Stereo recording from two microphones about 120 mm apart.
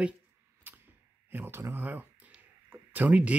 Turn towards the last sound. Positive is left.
turn(degrees=-10)  # may be behind; listen again after turning